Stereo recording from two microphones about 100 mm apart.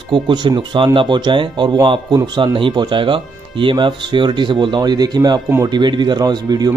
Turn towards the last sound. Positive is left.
turn(degrees=-40)  # may be behind; listen again after turning